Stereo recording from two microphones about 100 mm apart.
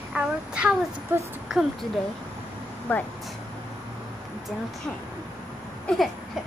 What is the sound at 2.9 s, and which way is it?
Speech, 15° left (ahead or behind).